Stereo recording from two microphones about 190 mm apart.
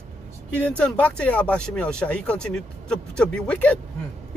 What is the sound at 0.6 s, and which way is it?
Speech, 5° left (ahead or behind).